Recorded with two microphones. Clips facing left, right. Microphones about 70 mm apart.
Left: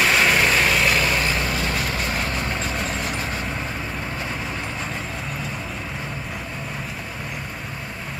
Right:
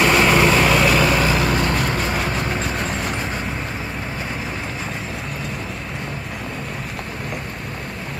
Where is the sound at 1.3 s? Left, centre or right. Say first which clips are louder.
Right 5 dB; right.